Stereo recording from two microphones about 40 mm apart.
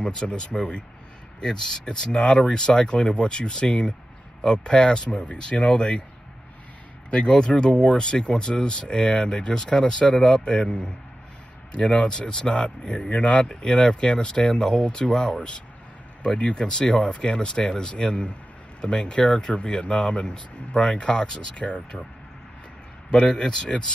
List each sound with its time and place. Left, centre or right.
0.0 s speech: left
5.2 s speech: left
7.1 s speech: left
23.1 s speech: centre